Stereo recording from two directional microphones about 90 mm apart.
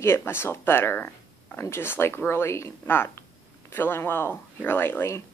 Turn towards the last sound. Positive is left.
turn(degrees=25)  # may be behind; listen again after turning